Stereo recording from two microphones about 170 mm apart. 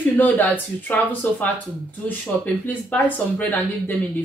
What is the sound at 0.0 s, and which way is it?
Speech, 10° left (ahead or behind).